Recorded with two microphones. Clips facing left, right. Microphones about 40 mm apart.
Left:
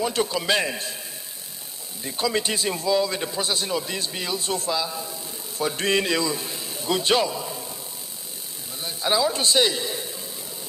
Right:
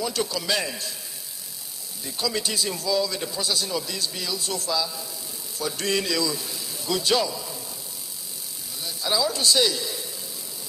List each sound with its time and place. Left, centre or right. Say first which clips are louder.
0.0 s a man's voice: left 3 dB; left
2.0 s a man's voice: left 3 dB; left
8.8 s a man's voice: left 3 dB; left